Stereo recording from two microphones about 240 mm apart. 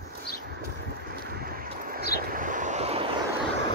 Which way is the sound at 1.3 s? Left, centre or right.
Right.